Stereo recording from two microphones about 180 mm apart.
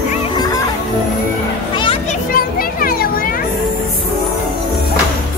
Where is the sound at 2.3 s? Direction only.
50° left (ahead or behind).